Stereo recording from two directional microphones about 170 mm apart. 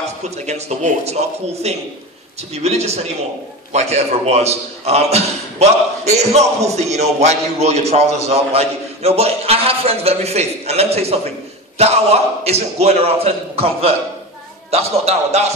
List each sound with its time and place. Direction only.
0.2 s a man's voice: 40° right (ahead or behind)